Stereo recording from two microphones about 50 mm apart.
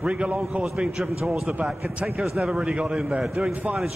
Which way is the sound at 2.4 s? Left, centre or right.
Centre.